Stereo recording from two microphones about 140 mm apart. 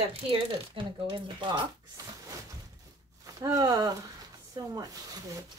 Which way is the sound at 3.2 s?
25° right (ahead or behind).